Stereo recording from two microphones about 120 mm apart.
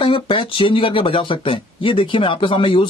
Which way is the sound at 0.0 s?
45° left (ahead or behind).